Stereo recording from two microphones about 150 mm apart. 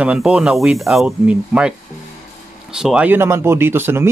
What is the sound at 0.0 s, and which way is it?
Speech, 5° right (ahead or behind).